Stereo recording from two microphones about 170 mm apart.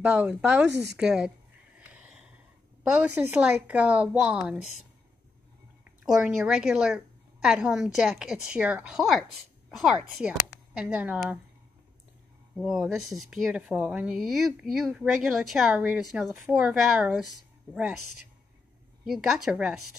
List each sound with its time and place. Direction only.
0.0 s speech: 5° right (ahead or behind)
0.7 s a woman's voice: 90° right
0.9 s a woman's voice: 5° right (ahead or behind)
1.8 s a sound: 10° right (ahead or behind)
3.2 s speech: 10° right (ahead or behind)
6.0 s a woman's voice: centre (ahead or behind)
12.5 s a woman's voice: centre (ahead or behind)
19.0 s a woman's voice: centre (ahead or behind)